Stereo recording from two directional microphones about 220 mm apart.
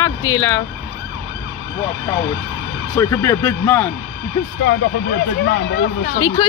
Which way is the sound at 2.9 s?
15° left (ahead or behind).